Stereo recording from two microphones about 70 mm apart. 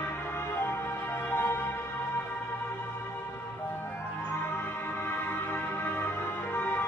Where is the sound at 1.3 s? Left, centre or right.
Left.